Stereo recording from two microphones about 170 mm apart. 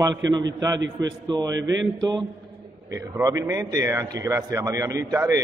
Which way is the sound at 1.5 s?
90° right.